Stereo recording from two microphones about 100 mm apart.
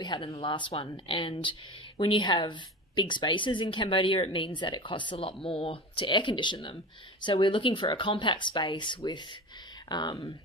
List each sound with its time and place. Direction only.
0.0 s speech: 50° left (ahead or behind)
0.3 s speech: 65° left (ahead or behind)
5.1 s speech: 65° left (ahead or behind); by 10.1 s 45° left (ahead or behind)